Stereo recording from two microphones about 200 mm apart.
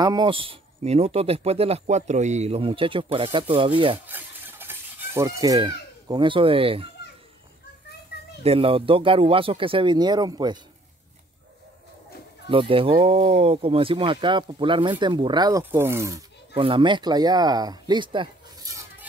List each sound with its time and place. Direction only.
0.0 s speech: 20° right (ahead or behind)
4.1 s a sound: 10° right (ahead or behind); by 6.9 s 25° right (ahead or behind)
8.4 s speech: 30° right (ahead or behind)
12.4 s speech: 25° right (ahead or behind)
16.5 s speech: 25° right (ahead or behind)